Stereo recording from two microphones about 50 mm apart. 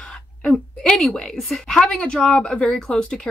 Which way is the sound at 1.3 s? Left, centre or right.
Centre.